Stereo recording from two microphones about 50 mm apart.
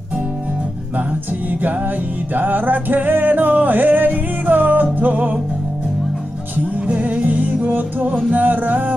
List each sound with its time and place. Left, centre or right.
2.3 s music: right
6.9 s music: right